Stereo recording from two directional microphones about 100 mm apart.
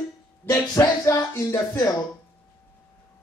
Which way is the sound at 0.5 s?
35° left (ahead or behind).